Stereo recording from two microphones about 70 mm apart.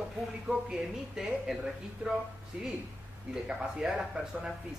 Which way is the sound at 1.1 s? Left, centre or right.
Centre.